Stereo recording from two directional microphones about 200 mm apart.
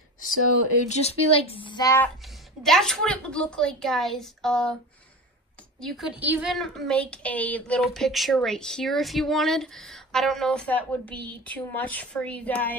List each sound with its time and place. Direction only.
0.8 s speech: 35° left (ahead or behind); by 2.0 s 15° left (ahead or behind)
2.2 s a woman's voice: centre (ahead or behind)
5.8 s a woman's voice: centre (ahead or behind)